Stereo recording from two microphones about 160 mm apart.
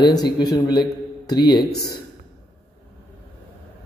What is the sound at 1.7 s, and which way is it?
Speech, 80° left.